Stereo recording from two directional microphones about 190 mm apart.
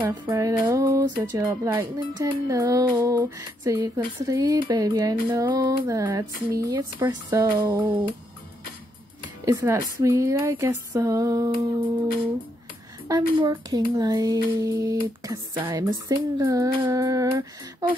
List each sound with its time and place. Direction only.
0.1 s speech: 15° right (ahead or behind)
9.4 s speech: 15° right (ahead or behind)
13.1 s speech: 20° right (ahead or behind)